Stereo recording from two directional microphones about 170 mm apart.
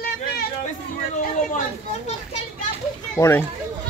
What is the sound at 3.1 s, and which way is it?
Speech, 15° left (ahead or behind).